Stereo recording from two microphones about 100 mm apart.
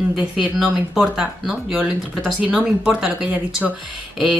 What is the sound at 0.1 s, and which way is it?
Speech, 5° right (ahead or behind).